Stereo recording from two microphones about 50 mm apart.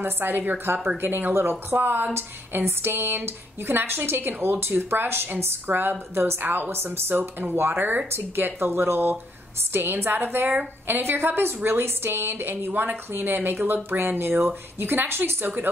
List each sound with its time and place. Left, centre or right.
0.0 s speech: right
15.4 s speech: right